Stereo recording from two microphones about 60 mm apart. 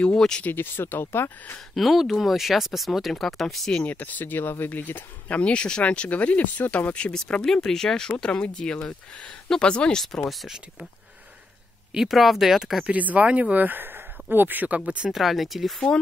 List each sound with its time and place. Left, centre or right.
0.0 s speech: centre
0.4 s speech: left
1.8 s speech: centre
3.8 s speech: left
5.4 s speech: centre
11.9 s speech: centre
12.8 s speech: right
15.0 s speech: centre